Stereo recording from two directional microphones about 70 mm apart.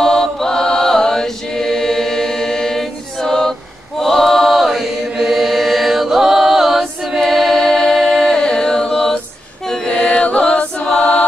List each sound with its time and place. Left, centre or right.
0.0 s chant: centre
7.2 s a capella: centre
7.9 s singing: centre
8.4 s chant: centre
9.7 s choir: centre